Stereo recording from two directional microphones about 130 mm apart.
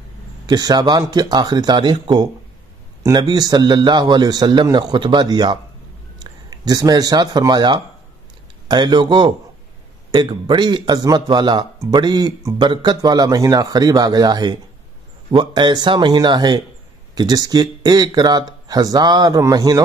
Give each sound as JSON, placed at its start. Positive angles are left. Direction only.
{"t": 0.5, "sound": "speech", "side_deg": -30}